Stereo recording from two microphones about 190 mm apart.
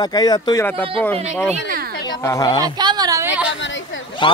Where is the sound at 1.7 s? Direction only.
50° right (ahead or behind).